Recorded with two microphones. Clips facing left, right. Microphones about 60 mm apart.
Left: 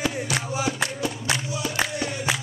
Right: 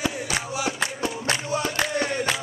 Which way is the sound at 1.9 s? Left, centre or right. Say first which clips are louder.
Right 4 dB; right.